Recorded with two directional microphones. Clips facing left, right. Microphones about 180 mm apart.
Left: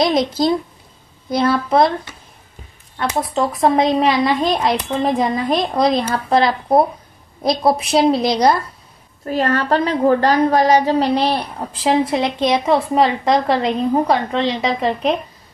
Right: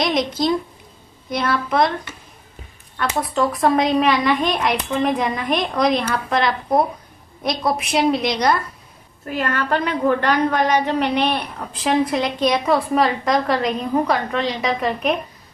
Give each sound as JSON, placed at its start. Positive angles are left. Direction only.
{"t": 1.3, "sound": "a woman's voice", "side_deg": 30}
{"t": 3.0, "sound": "a woman's voice", "side_deg": 25}